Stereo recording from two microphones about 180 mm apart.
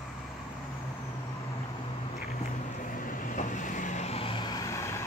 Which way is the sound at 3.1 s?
45° left (ahead or behind).